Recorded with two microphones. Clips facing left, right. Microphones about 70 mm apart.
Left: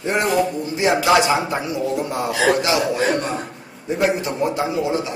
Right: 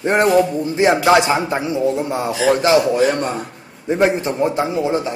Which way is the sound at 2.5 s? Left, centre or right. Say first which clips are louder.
Right 5 dB; right.